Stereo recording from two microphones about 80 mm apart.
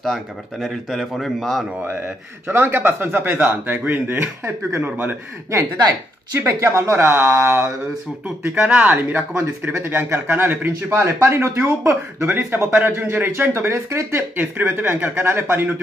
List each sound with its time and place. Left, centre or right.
0.0 s speech: centre
2.4 s a man's voice: right
6.4 s speech: right
8.6 s a man's voice: centre
9.3 s a man's voice: right
13.7 s speech: right
14.3 s a man's voice: right